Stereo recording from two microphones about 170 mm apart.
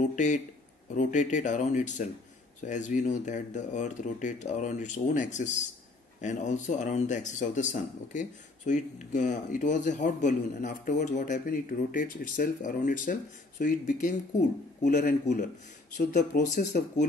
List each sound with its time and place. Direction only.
0.0 s speech: 45° left (ahead or behind)
16.5 s speech: 45° left (ahead or behind)